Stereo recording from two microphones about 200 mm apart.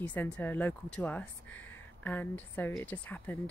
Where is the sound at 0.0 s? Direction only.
10° left (ahead or behind).